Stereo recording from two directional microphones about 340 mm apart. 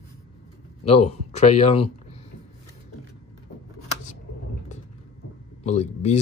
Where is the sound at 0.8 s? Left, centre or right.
Centre.